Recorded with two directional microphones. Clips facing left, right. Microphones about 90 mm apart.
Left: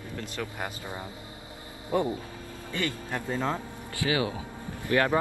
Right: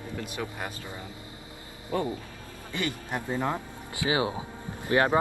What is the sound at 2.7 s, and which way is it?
Speech, 20° right (ahead or behind).